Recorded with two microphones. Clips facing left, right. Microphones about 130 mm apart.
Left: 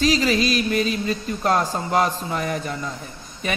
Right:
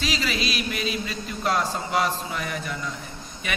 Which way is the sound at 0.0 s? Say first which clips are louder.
Left 8 dB; 40° left (ahead or behind).